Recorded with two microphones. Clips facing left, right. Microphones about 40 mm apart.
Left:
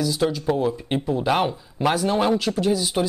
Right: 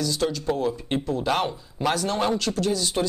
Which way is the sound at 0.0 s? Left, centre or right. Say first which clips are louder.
Left 3 dB; centre.